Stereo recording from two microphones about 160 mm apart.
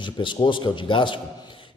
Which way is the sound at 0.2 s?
30° left (ahead or behind).